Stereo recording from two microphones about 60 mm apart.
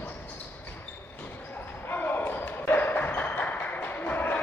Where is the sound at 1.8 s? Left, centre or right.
Left.